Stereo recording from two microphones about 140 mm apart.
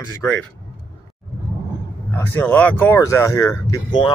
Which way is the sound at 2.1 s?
10° left (ahead or behind).